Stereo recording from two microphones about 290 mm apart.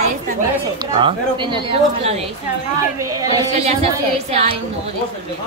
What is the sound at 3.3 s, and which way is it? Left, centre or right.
Speech, right.